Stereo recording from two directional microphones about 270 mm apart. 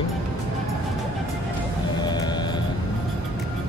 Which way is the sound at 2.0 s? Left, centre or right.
Centre.